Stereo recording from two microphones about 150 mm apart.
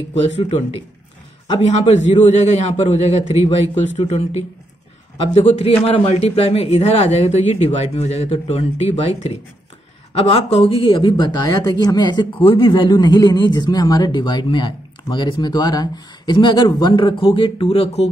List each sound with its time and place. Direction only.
0.4 s speech: 45° left (ahead or behind)